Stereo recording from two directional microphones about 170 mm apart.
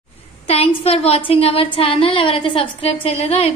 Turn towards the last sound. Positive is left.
turn(degrees=35)  # may be behind; listen again after turning